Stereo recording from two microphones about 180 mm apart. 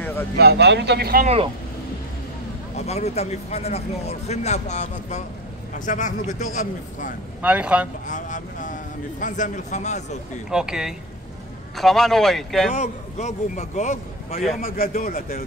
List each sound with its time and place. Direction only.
0.0 s a sound: 10° left (ahead or behind)
0.4 s speech: 70° right (ahead or behind)
1.2 s speech: 35° right (ahead or behind)
2.9 s a man's voice: 35° left (ahead or behind)
7.4 s speech: 5° right (ahead or behind)
8.1 s a man's voice: 45° left (ahead or behind)
10.5 s speech: 5° right (ahead or behind)
12.7 s a man's voice: 40° left (ahead or behind); by 15.4 s 55° left (ahead or behind)